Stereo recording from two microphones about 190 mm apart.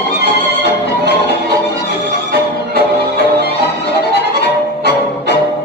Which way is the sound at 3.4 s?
60° left (ahead or behind).